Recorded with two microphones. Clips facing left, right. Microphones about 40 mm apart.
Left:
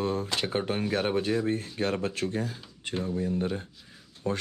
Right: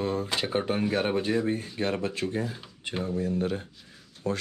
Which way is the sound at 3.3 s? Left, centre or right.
Right.